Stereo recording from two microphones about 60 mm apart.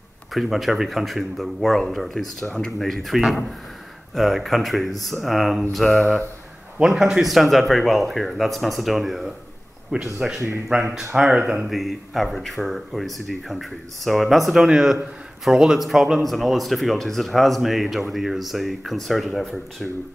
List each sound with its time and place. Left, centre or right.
0.3 s speech: centre
6.8 s speech: centre
9.9 s speech: centre
10.2 s speech: centre
11.7 s speech: centre